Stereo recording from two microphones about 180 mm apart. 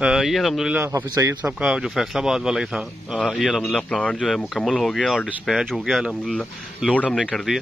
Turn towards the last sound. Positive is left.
turn(degrees=0)  # may be behind; listen again after turning